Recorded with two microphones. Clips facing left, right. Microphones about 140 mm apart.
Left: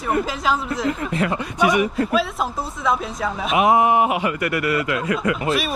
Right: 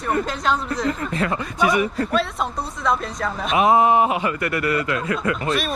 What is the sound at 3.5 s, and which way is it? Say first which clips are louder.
Speech: even; 20° left (ahead or behind).